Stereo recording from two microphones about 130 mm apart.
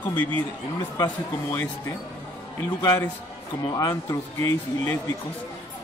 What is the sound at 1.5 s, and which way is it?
Speech, 20° left (ahead or behind).